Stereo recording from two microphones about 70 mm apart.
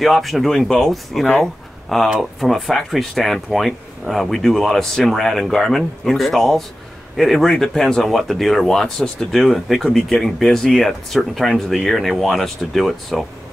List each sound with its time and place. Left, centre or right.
0.0 s speech: centre
1.4 s a sound: centre
2.1 s speech: centre